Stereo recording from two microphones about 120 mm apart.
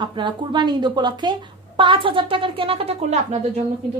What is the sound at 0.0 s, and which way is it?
A woman's voice, 40° right (ahead or behind).